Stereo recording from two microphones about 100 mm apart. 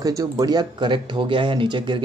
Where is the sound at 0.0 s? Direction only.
40° right (ahead or behind).